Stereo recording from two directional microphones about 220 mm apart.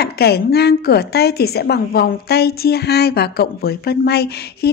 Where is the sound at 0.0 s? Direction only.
45° left (ahead or behind).